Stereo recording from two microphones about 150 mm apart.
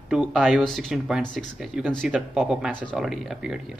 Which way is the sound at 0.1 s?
5° right (ahead or behind).